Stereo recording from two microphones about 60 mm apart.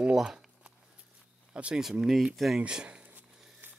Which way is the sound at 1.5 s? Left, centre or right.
Centre.